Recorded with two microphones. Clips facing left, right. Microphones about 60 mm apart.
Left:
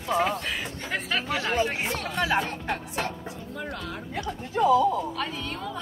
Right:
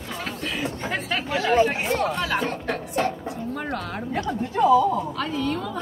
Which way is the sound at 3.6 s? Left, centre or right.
Right.